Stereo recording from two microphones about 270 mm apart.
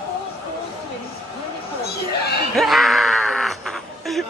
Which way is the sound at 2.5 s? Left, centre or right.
Centre.